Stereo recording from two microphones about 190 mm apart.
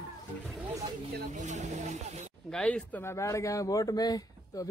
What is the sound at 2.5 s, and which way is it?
Speech, 5° left (ahead or behind).